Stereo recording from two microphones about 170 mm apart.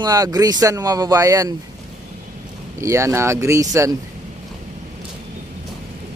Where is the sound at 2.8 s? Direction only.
15° right (ahead or behind).